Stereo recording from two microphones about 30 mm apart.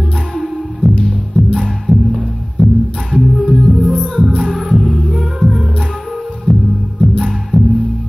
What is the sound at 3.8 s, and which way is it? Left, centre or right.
Music, left.